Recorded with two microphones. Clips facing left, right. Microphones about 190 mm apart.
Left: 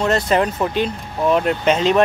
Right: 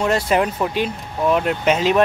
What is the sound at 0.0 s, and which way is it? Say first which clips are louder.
Speech: left 1 dB; 10° right (ahead or behind).